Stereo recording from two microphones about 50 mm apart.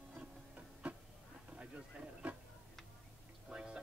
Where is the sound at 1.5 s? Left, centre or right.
Right.